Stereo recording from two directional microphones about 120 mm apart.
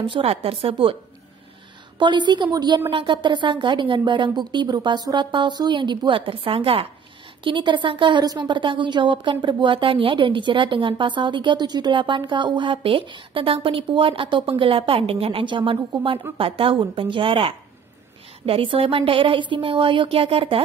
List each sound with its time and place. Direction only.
0.2 s a woman's voice: 55° right (ahead or behind)
2.0 s a woman's voice: 40° right (ahead or behind)